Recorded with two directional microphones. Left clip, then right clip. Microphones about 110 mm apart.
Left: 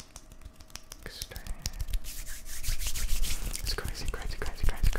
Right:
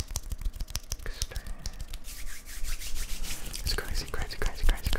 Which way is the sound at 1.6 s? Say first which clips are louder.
Left 6 dB; 30° left (ahead or behind).